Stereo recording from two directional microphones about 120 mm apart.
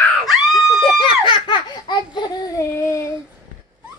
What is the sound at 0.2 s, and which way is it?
Screaming, centre (ahead or behind).